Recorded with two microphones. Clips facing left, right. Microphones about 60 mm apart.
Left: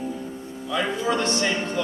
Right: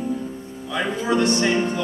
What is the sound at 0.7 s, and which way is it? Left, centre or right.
Speech, centre.